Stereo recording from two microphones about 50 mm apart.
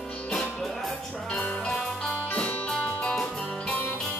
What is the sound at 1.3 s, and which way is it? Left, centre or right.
Music, left.